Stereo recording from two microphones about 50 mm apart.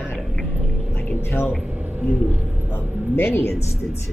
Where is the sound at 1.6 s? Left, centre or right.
Right.